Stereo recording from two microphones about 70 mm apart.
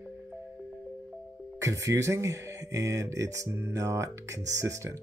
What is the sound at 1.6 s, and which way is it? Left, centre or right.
Speech, right.